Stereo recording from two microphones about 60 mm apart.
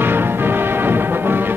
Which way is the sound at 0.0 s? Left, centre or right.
Right.